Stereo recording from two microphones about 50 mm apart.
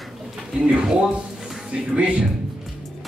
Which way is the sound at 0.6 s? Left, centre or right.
Right.